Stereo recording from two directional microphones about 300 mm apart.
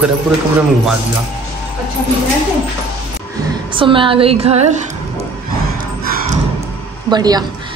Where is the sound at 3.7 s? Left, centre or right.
Centre.